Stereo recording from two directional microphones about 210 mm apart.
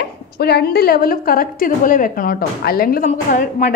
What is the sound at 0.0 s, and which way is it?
A woman's voice, 50° left (ahead or behind).